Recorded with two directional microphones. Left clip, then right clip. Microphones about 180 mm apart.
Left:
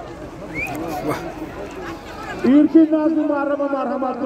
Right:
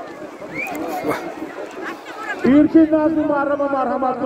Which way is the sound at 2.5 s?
65° left (ahead or behind).